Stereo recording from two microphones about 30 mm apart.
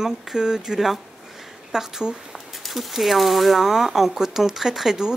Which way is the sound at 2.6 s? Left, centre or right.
Centre.